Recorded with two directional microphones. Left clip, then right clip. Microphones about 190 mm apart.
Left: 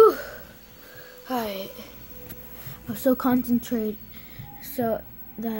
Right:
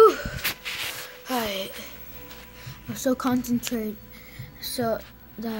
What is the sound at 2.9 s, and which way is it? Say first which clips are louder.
A woman's voice: left 2 dB; 15° left (ahead or behind).